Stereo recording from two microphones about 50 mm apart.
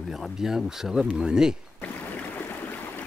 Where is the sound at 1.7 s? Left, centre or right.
Left.